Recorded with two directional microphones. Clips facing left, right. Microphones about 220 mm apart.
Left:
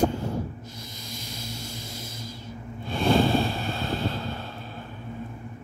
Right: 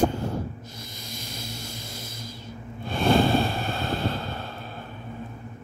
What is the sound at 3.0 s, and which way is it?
Vehicle, 55° right (ahead or behind).